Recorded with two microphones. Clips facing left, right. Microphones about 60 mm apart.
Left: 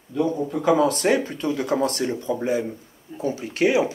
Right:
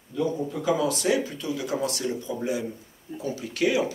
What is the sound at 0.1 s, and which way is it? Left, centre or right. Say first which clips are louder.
Speech: left 4 dB; left.